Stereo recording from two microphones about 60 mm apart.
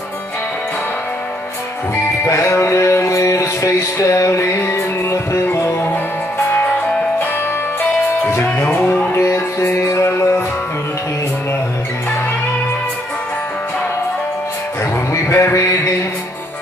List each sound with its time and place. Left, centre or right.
2.2 s music: left
8.5 s music: left
9.1 s music: left
15.1 s a sound: left